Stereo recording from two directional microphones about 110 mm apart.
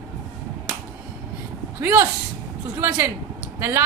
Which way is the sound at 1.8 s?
20° right (ahead or behind).